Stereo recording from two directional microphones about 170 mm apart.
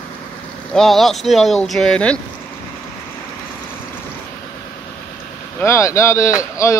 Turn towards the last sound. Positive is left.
turn(degrees=20)  # may be behind; listen again after turning